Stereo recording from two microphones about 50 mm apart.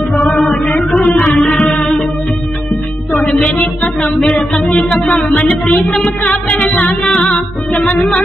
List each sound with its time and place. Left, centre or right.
0.3 s music: centre
3.4 s music: centre
4.0 s a sound: centre
5.4 s music: left
5.8 s music: centre